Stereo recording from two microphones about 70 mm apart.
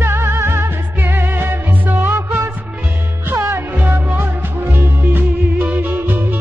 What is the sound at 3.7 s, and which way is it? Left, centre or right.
Music, right.